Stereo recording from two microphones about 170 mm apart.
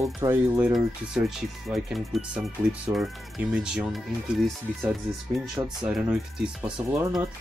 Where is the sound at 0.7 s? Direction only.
Centre (ahead or behind).